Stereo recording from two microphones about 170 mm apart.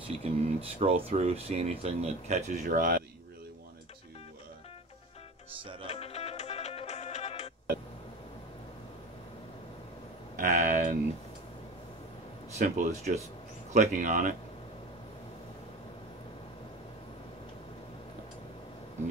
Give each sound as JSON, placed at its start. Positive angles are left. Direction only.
{"t": 0.2, "sound": "speech", "side_deg": -35}
{"t": 5.6, "sound": "music", "side_deg": -30}
{"t": 5.9, "sound": "music", "side_deg": 35}
{"t": 10.3, "sound": "a sound", "side_deg": -50}
{"t": 12.5, "sound": "speech", "side_deg": -40}